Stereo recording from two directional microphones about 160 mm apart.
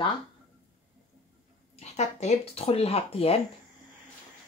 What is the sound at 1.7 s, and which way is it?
Speech, 45° left (ahead or behind).